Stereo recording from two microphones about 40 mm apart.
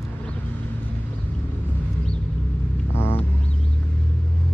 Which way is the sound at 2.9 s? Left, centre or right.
Left.